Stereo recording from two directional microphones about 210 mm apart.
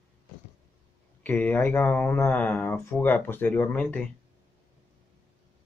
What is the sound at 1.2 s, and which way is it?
Speech, 10° left (ahead or behind).